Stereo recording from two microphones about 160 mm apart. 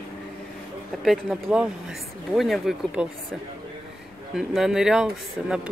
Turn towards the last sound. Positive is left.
turn(degrees=-5)  # may be behind; listen again after turning